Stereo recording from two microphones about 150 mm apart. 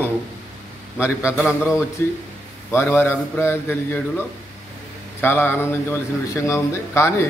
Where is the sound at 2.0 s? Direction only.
15° left (ahead or behind).